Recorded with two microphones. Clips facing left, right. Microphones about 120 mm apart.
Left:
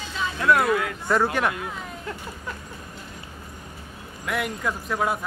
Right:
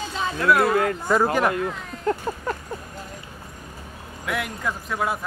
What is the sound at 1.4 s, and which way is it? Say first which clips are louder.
Speech: right 4 dB; centre (ahead or behind).